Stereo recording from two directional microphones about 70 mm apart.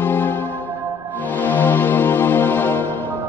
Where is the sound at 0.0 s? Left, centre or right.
Left.